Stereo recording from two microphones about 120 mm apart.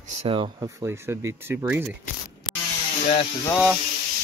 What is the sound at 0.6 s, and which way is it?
Speech, 20° right (ahead or behind).